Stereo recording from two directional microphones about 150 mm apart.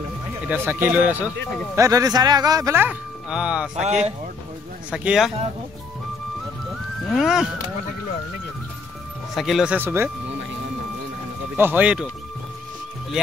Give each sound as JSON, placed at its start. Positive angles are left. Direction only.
{"t": 0.5, "sound": "speech", "side_deg": -10}
{"t": 1.8, "sound": "speech", "side_deg": -20}
{"t": 3.8, "sound": "speech", "side_deg": -50}
{"t": 4.9, "sound": "speech", "side_deg": -5}
{"t": 7.1, "sound": "speech", "side_deg": -5}
{"t": 9.3, "sound": "speech", "side_deg": 0}
{"t": 9.8, "sound": "speech", "side_deg": -15}
{"t": 11.5, "sound": "speech", "side_deg": -15}